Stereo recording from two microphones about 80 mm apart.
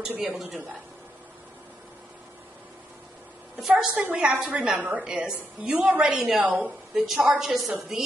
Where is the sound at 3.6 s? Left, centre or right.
Centre.